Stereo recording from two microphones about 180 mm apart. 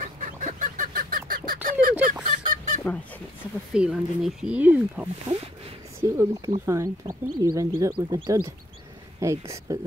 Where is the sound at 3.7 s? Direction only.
5° right (ahead or behind).